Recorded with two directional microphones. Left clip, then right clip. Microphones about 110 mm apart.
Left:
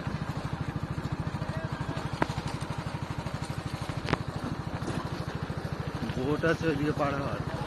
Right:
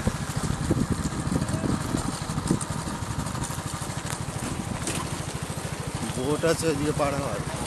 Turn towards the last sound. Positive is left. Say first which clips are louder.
# right 4 dB
turn(degrees=-35)  # may be behind; listen again after turning